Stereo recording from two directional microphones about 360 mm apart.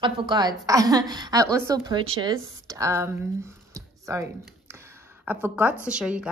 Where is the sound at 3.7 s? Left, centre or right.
Centre.